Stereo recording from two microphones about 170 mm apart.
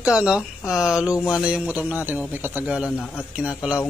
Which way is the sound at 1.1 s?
20° left (ahead or behind).